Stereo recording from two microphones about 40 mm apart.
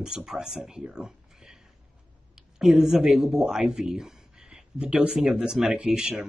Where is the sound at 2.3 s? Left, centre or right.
Centre.